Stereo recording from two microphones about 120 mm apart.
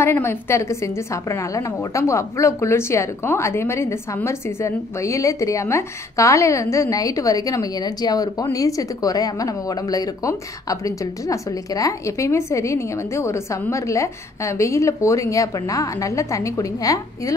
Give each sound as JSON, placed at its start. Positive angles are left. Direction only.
{"t": 0.0, "sound": "a woman's voice", "side_deg": 20}